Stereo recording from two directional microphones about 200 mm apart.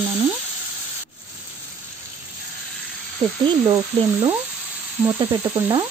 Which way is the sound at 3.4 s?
25° right (ahead or behind).